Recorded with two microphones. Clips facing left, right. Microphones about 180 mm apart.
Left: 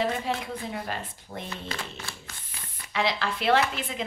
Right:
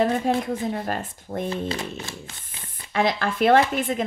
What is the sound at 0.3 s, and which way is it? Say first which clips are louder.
Speech: right 7 dB; 45° right (ahead or behind).